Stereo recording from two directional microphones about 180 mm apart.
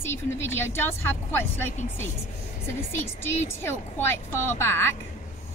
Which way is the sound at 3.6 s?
15° left (ahead or behind).